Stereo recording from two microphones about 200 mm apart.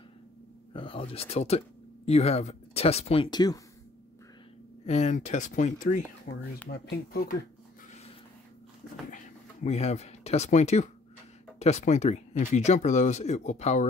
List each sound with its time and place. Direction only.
0.7 s speech: 25° left (ahead or behind)
4.8 s speech: 35° left (ahead or behind)
6.7 s speech: 50° left (ahead or behind)
9.7 s speech: 30° left (ahead or behind)